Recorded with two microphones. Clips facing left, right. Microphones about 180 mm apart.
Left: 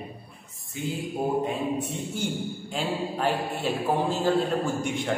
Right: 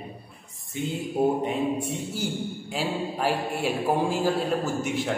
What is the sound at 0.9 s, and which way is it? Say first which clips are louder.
Mantra: right 3 dB; 20° right (ahead or behind).